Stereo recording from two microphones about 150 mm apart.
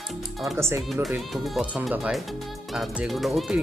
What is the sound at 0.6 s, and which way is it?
Speech, 15° right (ahead or behind).